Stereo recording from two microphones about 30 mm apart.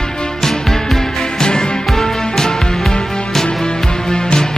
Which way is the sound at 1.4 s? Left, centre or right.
Left.